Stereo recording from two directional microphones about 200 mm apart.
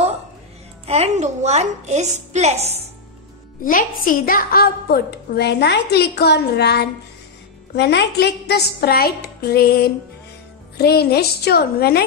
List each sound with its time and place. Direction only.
0.8 s a woman's voice: 30° right (ahead or behind)
3.6 s a woman's voice: 45° left (ahead or behind)